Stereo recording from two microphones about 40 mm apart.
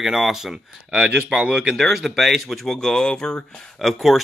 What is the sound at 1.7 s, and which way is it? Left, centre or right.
Speech, centre.